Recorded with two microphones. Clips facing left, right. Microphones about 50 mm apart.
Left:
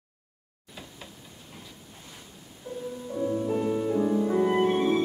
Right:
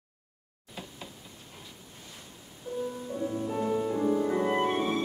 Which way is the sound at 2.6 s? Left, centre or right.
Left.